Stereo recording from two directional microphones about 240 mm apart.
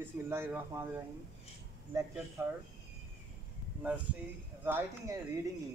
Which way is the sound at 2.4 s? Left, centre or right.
Centre.